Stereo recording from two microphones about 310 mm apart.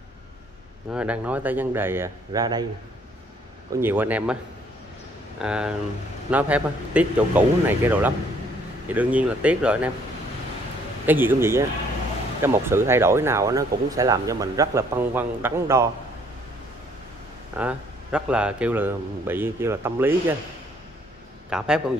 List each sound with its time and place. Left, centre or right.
0.9 s speech: centre
3.7 s speech: centre
5.4 s speech: centre
11.1 s speech: centre
17.6 s speech: centre
21.5 s speech: centre